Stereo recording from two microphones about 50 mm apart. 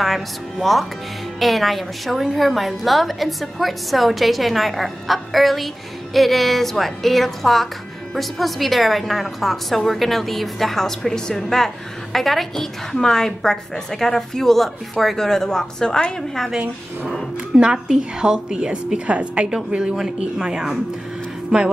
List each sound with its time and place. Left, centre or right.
0.0 s a woman's voice: centre
17.6 s a woman's voice: centre